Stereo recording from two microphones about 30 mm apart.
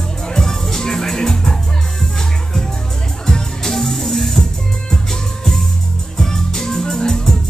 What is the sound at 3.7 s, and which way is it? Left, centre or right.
Music, centre.